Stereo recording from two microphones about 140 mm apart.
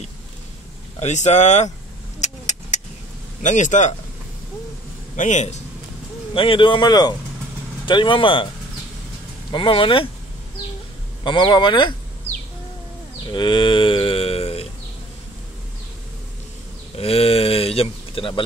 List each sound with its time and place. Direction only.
0.9 s speech: 55° left (ahead or behind)
2.1 s vehicle: 55° left (ahead or behind)
3.4 s speech: 60° left (ahead or behind)
5.1 s speech: 60° left (ahead or behind)
6.3 s speech: 40° left (ahead or behind)
9.5 s speech: 35° left (ahead or behind)
11.2 s speech: 35° left (ahead or behind)
13.3 s a sound: 35° left (ahead or behind)
16.9 s speech: 45° left (ahead or behind)